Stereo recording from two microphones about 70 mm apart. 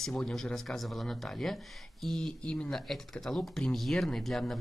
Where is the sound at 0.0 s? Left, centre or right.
Centre.